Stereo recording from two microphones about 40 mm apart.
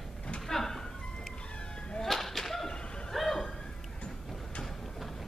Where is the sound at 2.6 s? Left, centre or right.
Left.